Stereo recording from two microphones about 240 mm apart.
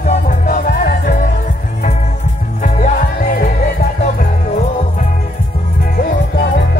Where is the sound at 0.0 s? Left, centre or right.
Left.